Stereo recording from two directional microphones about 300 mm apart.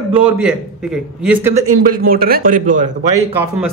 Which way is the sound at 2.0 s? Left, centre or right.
Right.